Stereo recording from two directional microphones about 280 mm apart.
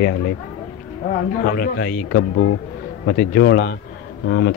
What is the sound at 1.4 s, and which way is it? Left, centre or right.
Speech, left.